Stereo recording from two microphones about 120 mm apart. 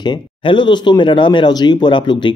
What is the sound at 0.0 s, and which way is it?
Speech, 40° left (ahead or behind).